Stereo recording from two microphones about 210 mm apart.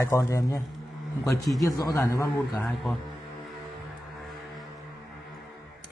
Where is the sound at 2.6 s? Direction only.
Centre (ahead or behind).